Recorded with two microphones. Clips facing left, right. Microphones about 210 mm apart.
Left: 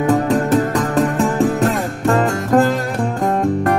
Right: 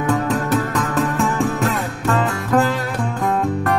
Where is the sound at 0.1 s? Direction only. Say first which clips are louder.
Left 4 dB; 35° left (ahead or behind).